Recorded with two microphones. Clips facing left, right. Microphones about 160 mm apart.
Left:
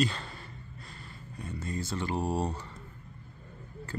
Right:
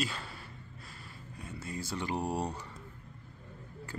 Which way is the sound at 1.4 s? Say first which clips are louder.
Left 4 dB; 10° right (ahead or behind).